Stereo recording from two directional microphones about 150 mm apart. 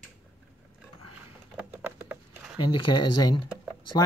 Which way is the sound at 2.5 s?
30° left (ahead or behind).